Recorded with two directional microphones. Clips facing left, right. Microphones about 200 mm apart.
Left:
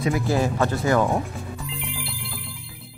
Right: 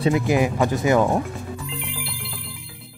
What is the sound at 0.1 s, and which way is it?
Speech, 15° right (ahead or behind).